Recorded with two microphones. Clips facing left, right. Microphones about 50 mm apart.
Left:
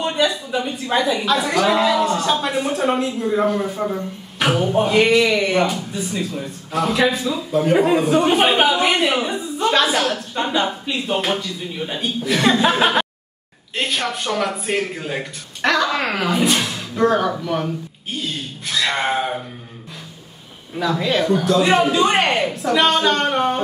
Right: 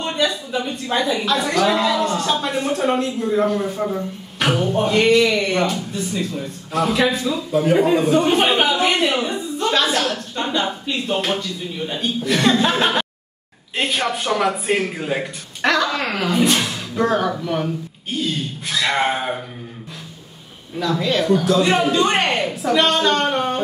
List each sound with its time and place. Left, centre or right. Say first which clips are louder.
0.0 s a woman's voice: left 2 dB; centre
13.7 s a man's voice: right 1 dB; centre
20.7 s a woman's voice: even; centre